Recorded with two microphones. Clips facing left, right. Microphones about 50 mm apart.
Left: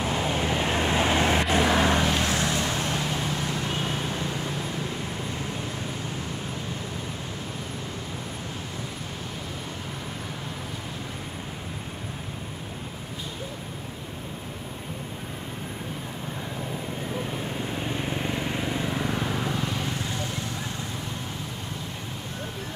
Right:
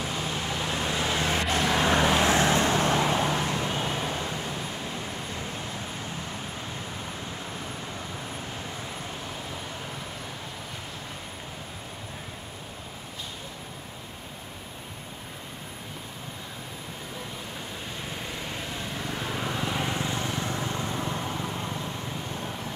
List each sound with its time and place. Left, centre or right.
0.0 s vehicle: left
1.4 s vehicle: centre
1.9 s vehicle: centre
2.2 s vehicle: right
3.8 s vehicle: centre
18.1 s vehicle: left
19.1 s vehicle: centre
19.7 s vehicle: right